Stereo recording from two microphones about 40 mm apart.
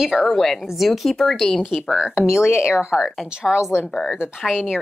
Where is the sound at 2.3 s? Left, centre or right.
Left.